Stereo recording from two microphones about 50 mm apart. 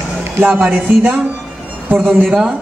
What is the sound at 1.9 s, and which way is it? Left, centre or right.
Speech, centre.